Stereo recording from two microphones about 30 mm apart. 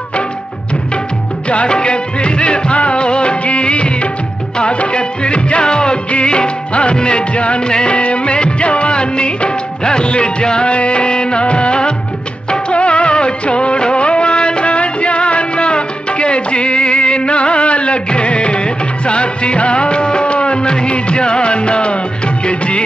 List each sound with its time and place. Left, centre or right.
1.7 s music: left
7.9 s music of bollywood: left
10.4 s music: left
12.4 s music of bollywood: left
22.5 s music: left